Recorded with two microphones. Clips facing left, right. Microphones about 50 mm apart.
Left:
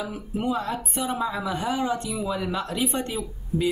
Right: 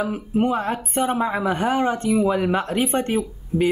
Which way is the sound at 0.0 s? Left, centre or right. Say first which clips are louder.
Right 7 dB; right.